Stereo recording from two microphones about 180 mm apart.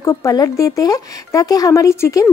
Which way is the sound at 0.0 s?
15° left (ahead or behind).